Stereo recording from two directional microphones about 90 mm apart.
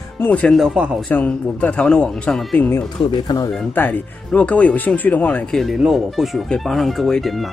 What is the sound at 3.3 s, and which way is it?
Speech, 45° left (ahead or behind).